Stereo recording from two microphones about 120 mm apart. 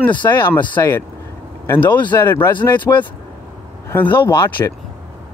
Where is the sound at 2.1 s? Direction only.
20° left (ahead or behind).